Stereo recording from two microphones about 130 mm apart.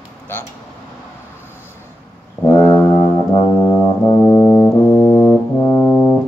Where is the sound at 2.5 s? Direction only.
20° left (ahead or behind).